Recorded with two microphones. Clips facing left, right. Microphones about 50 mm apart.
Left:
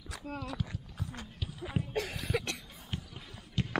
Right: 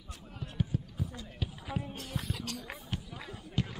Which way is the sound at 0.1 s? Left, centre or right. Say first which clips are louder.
Left 7 dB; left.